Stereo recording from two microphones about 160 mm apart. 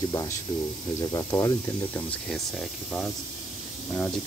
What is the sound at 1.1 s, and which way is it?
Speech, 15° left (ahead or behind).